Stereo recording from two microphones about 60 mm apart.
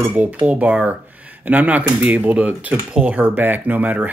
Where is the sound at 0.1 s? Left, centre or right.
Right.